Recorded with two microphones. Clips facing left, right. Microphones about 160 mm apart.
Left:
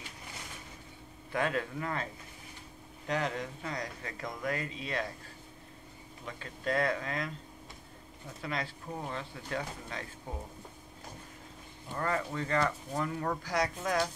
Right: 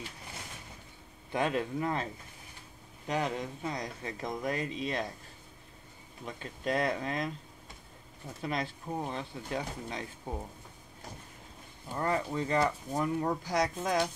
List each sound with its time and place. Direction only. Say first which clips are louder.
1.3 s speech: right 2 dB; 20° right (ahead or behind)
3.1 s speech: right 1 dB; 15° right (ahead or behind)
6.2 s speech: right 1 dB; 20° right (ahead or behind)
8.4 s speech: right 3 dB; 20° right (ahead or behind)
12.0 s speech: right 2 dB; 20° right (ahead or behind)